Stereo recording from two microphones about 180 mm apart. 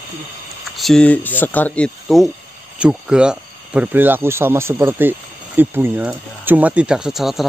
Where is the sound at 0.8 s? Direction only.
5° left (ahead or behind).